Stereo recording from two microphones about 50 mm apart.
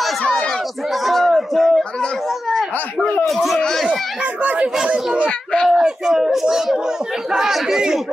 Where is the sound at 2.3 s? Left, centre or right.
Centre.